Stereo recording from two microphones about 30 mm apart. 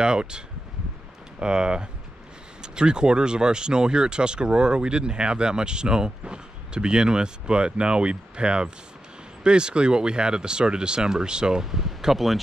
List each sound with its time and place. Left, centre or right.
0.0 s speech: right
1.4 s speech: right
11.6 s speech: centre